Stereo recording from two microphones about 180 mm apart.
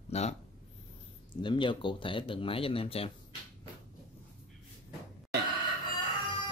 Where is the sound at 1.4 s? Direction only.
25° left (ahead or behind).